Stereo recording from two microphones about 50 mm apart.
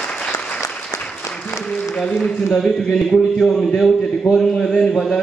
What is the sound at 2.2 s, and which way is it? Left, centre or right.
Speech, centre.